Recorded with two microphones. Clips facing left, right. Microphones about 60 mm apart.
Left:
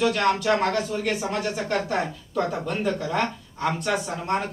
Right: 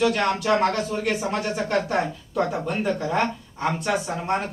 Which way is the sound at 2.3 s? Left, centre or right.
Centre.